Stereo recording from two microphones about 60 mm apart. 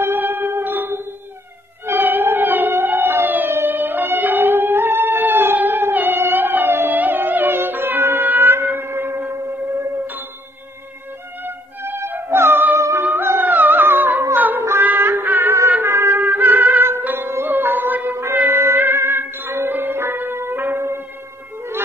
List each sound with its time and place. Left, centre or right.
0.0 s music: right
1.9 s howl: right
3.5 s music: right
11.4 s music: right
13.0 s music: right